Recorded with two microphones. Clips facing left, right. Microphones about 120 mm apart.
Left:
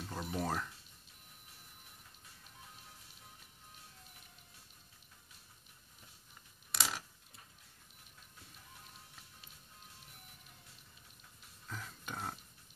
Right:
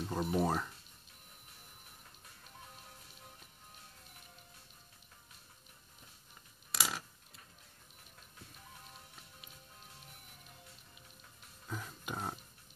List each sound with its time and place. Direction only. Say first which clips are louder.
0.0 s speech: right 6 dB; 20° right (ahead or behind)
6.7 s a sound: right 1 dB; centre (ahead or behind)
11.6 s music: right 3 dB; 15° right (ahead or behind)